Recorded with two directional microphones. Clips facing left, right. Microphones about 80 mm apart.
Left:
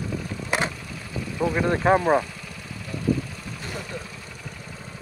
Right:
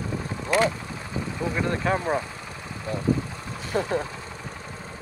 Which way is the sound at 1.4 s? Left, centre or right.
Left.